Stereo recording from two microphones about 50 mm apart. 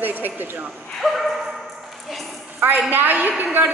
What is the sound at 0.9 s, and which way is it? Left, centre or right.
Dog, centre.